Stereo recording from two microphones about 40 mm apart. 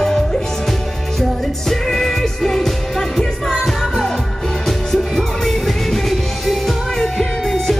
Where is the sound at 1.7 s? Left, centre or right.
Centre.